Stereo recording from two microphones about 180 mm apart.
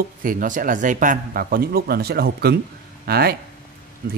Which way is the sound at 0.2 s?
50° right (ahead or behind).